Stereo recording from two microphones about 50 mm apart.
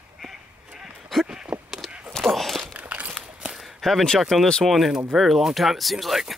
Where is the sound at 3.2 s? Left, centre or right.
Centre.